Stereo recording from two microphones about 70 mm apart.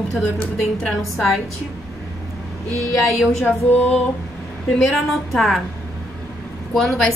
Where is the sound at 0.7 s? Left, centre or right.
Centre.